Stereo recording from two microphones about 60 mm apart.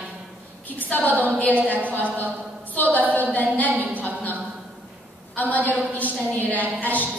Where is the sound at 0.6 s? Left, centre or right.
Left.